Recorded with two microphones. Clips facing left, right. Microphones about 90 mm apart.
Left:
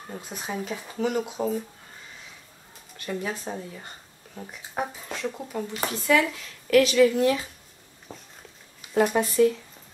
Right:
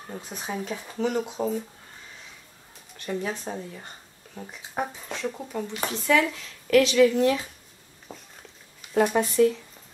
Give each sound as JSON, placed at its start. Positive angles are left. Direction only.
{"t": 0.1, "sound": "speech", "side_deg": 0}
{"t": 3.1, "sound": "speech", "side_deg": 0}
{"t": 8.1, "sound": "a sound", "side_deg": -5}
{"t": 8.9, "sound": "speech", "side_deg": 0}